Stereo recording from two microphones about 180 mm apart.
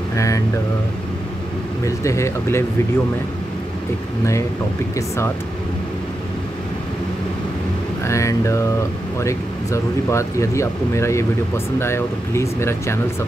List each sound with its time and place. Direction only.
0.1 s a sound: 15° left (ahead or behind)
1.9 s speech: 15° left (ahead or behind)
4.9 s speech: 15° left (ahead or behind)
8.0 s speech: 15° left (ahead or behind)